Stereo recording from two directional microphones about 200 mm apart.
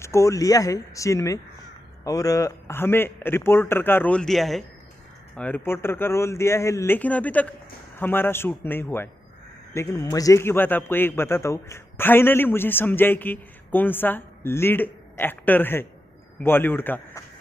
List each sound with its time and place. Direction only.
0.0 s a man's voice: 15° left (ahead or behind)